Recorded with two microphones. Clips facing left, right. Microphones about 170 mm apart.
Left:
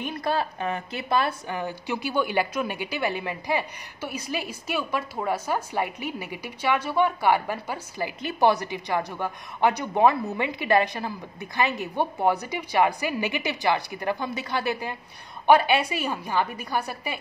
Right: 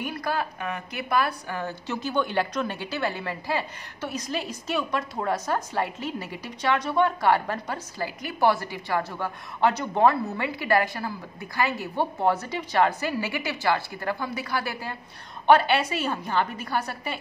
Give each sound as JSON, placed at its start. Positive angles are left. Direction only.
{"t": 0.0, "sound": "a woman's voice", "side_deg": 25}
{"t": 8.2, "sound": "a woman's voice", "side_deg": 20}